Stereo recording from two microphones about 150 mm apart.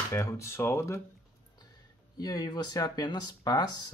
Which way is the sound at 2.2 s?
25° left (ahead or behind).